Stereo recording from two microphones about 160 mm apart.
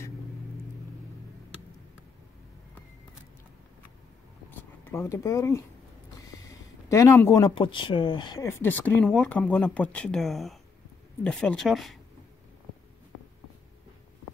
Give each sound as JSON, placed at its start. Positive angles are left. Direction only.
{"t": 4.5, "sound": "a sound", "side_deg": 15}
{"t": 6.9, "sound": "speech", "side_deg": 15}
{"t": 8.5, "sound": "speech", "side_deg": 15}